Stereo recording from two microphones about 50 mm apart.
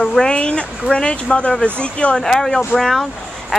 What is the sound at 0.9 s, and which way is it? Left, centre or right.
Speech, left.